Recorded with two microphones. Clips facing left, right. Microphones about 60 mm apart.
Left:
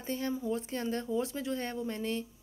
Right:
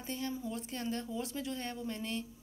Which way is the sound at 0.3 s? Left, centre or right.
Left.